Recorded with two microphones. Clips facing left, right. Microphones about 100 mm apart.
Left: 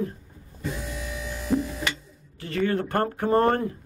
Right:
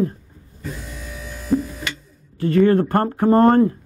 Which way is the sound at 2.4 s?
35° right (ahead or behind).